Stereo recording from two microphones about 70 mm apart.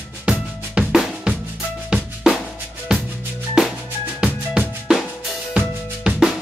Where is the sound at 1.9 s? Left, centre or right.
Centre.